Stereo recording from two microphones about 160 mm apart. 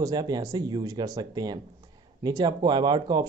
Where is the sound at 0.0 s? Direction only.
25° right (ahead or behind).